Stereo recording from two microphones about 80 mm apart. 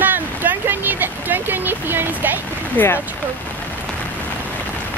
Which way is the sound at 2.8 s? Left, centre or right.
Left.